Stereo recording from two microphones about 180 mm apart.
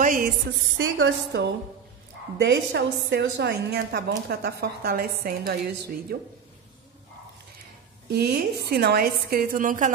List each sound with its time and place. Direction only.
0.0 s a sound: 50° right (ahead or behind)
0.5 s a woman's voice: 90° right; by 6.3 s 60° right (ahead or behind)
8.1 s a woman's voice: 65° right (ahead or behind); by 9.9 s 45° right (ahead or behind)